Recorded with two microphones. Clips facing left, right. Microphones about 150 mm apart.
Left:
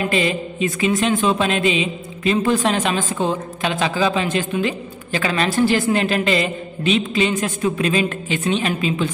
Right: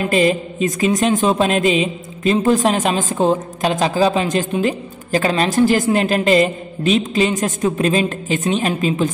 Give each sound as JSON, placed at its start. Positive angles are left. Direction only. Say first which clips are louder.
{"t": 0.0, "sound": "a woman's voice", "louder": "right 4 dB", "side_deg": -45}